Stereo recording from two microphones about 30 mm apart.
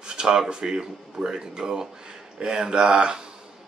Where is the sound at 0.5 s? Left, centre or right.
Right.